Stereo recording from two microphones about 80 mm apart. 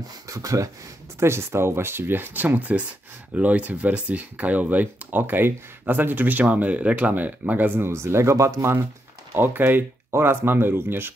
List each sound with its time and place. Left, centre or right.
0.3 s speech: right
1.2 s speech: right
9.3 s speech: right